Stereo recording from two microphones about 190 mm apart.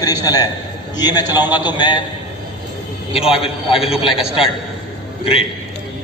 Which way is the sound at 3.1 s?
30° left (ahead or behind).